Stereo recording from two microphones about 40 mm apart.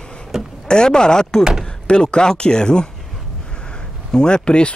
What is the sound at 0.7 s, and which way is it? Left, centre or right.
Speech, centre.